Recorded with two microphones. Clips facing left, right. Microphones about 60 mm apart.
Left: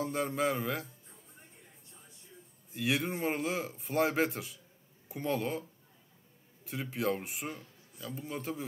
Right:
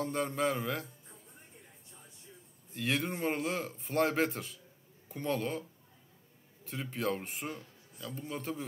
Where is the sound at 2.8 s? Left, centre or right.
Centre.